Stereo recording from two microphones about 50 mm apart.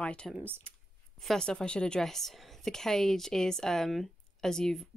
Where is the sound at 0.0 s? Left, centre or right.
Left.